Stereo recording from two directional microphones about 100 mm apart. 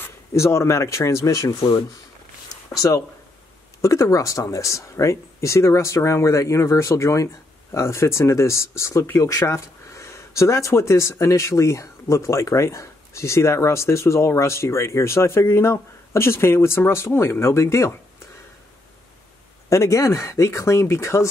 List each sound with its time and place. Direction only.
0.0 s speech: 30° left (ahead or behind)
19.7 s speech: 30° left (ahead or behind)